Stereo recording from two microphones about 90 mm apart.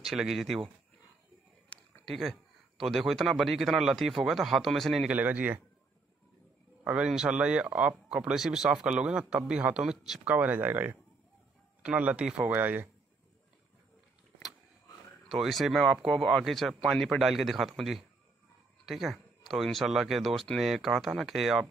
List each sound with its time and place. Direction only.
0.0 s speech: 5° right (ahead or behind)
1.7 s a sound: 10° left (ahead or behind)
2.0 s speech: 5° left (ahead or behind)
5.0 s speech: 15° right (ahead or behind)
6.8 s speech: 10° right (ahead or behind)
10.2 s speech: 15° right (ahead or behind)
11.8 s speech: 10° right (ahead or behind)
15.2 s speech: centre (ahead or behind)